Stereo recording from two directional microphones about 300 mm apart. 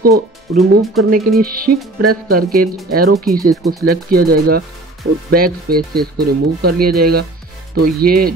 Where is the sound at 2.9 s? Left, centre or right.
Right.